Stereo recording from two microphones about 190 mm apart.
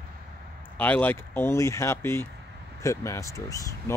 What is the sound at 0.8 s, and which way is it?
Speech, 10° left (ahead or behind).